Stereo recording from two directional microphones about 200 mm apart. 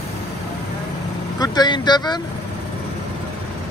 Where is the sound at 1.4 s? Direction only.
20° left (ahead or behind).